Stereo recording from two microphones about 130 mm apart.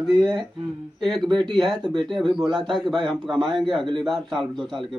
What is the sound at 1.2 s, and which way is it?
Speech, 35° right (ahead or behind).